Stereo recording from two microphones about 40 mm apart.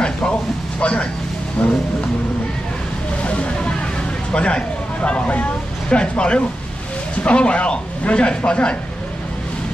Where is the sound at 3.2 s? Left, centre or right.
Left.